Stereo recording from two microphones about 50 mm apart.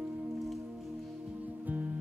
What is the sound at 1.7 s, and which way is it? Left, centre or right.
Music, right.